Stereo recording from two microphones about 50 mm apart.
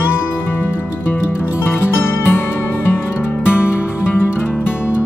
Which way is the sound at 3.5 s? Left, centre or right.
Left.